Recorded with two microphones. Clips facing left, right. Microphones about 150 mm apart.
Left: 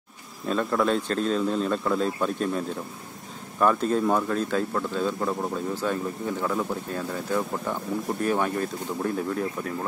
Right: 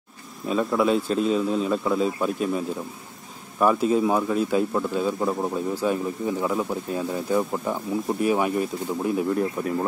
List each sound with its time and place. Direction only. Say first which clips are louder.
0.5 s speech: right 2 dB; 10° right (ahead or behind)